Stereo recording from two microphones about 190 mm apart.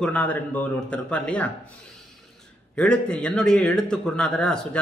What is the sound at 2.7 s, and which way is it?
A man's voice, 5° left (ahead or behind).